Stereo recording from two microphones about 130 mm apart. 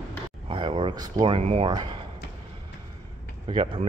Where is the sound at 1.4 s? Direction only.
55° right (ahead or behind).